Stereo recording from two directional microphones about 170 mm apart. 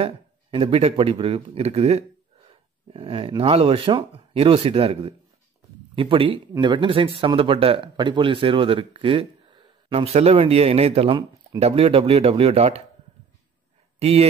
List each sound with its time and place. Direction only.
0.0 s speech: 30° right (ahead or behind)
13.9 s speech: 35° right (ahead or behind)